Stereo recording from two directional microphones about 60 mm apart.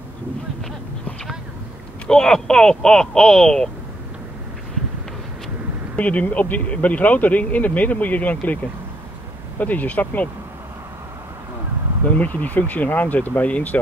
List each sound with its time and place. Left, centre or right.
2.0 s speech: centre
5.9 s speech: left
9.6 s speech: left
12.1 s speech: left